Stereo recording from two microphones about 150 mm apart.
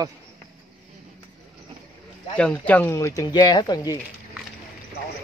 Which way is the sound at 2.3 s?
10° left (ahead or behind).